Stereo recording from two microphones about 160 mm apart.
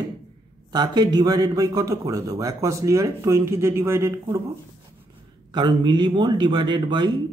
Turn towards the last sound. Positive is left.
turn(degrees=-30)  # may be behind; listen again after turning